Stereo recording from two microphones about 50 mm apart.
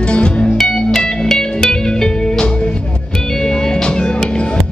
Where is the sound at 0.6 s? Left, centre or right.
Centre.